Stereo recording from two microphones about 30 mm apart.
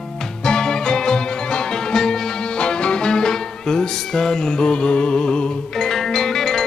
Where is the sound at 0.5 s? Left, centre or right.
Left.